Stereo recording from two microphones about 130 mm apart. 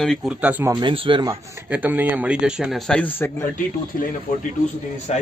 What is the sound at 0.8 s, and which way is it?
Speech, 40° right (ahead or behind).